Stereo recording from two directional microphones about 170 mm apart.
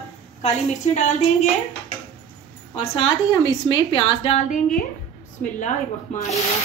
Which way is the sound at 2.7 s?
30° left (ahead or behind).